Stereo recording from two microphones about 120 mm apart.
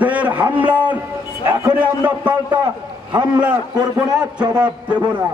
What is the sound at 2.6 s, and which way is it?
Speech, 35° right (ahead or behind).